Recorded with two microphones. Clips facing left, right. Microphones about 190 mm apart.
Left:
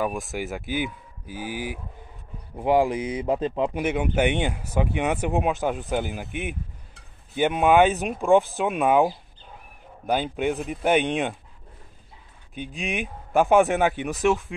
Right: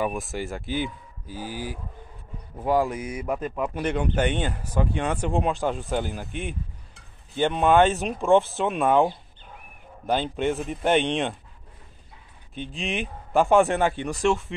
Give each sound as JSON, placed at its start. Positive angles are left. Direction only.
{"t": 0.0, "sound": "a man's voice", "side_deg": 0}
{"t": 3.8, "sound": "speech", "side_deg": 10}
{"t": 12.9, "sound": "speech", "side_deg": 15}
{"t": 13.5, "sound": "speech", "side_deg": 0}